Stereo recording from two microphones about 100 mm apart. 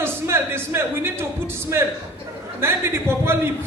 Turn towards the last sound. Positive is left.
turn(degrees=-25)  # may be behind; listen again after turning